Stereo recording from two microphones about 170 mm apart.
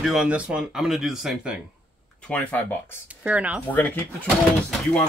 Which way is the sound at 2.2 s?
10° left (ahead or behind).